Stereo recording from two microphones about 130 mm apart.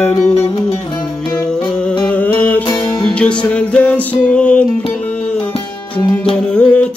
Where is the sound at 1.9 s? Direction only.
10° left (ahead or behind).